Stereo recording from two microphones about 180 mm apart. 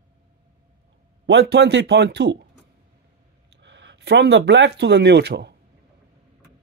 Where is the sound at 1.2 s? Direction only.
70° right (ahead or behind).